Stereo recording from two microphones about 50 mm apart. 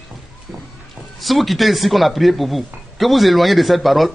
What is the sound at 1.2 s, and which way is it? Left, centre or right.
Speech, centre.